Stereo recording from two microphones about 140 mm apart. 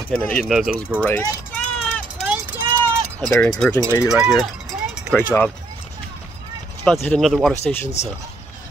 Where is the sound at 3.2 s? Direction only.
15° left (ahead or behind).